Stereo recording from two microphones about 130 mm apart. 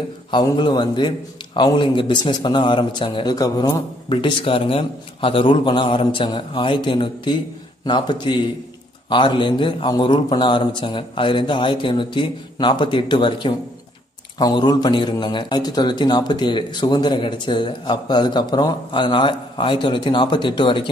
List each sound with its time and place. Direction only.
0.3 s a man's voice: 35° left (ahead or behind)